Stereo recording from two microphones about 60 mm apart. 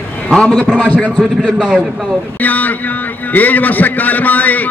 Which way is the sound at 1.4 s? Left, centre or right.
Centre.